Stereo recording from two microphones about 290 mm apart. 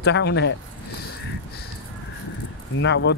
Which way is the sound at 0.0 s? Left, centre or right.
Left.